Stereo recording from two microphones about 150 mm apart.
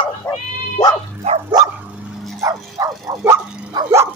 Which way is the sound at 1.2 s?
45° right (ahead or behind).